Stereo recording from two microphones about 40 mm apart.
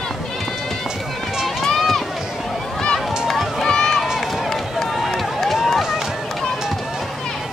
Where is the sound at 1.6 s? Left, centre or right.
Centre.